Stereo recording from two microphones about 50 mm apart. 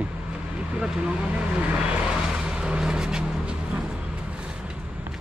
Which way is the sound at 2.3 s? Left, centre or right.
Centre.